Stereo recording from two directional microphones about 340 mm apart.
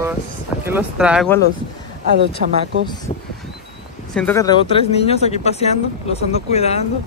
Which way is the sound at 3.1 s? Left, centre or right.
Centre.